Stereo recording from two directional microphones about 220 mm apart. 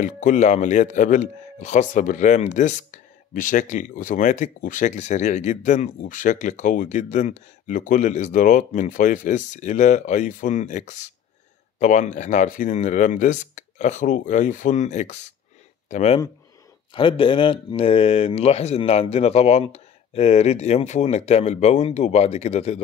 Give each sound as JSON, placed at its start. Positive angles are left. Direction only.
{"t": 0.0, "sound": "speech", "side_deg": 35}